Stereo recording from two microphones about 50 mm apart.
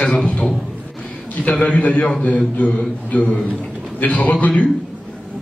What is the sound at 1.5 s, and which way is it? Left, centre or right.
A man's voice, left.